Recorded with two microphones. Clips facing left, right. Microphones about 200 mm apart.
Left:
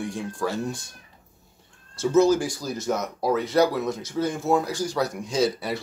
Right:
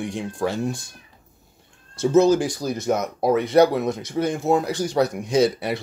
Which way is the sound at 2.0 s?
20° right (ahead or behind).